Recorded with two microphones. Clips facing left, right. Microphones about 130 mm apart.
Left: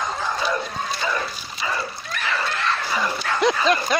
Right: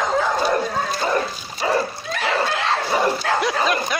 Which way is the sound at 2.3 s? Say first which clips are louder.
Right 5 dB; 55° right (ahead or behind).